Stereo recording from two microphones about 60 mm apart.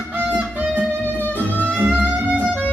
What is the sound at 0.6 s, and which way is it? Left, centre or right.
Music, right.